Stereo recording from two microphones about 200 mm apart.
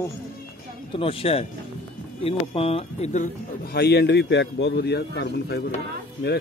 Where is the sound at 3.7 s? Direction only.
55° left (ahead or behind).